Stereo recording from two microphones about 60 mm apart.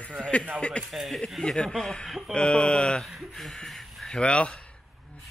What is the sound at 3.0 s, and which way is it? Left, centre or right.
Speech, centre.